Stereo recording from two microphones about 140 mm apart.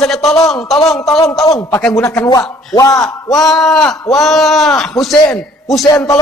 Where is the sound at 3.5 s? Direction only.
5° left (ahead or behind).